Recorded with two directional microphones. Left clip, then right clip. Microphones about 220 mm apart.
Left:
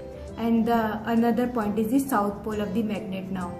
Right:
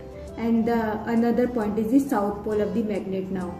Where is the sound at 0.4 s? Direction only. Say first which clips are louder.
Even; 50° left (ahead or behind).